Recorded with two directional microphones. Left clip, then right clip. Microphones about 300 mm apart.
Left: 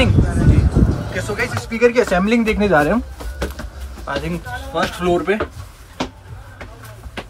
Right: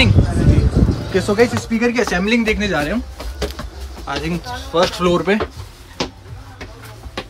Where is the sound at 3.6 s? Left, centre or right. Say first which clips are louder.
Right 2 dB; centre.